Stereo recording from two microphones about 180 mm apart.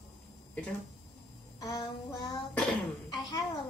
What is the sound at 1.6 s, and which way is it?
A woman's voice, 20° left (ahead or behind).